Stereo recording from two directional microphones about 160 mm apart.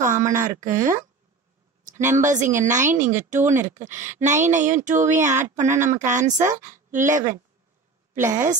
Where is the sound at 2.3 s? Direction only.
50° right (ahead or behind).